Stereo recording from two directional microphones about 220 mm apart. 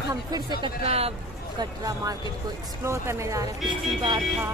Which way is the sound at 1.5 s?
15° right (ahead or behind).